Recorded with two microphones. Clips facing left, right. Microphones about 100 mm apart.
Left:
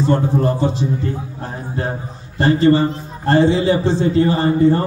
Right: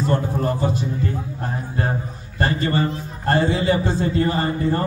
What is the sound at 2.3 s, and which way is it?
A man's voice, 25° left (ahead or behind).